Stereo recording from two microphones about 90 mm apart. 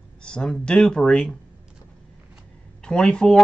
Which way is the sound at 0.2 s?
10° left (ahead or behind).